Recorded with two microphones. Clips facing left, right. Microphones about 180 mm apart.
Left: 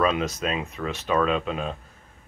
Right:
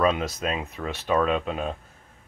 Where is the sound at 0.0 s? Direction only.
35° right (ahead or behind).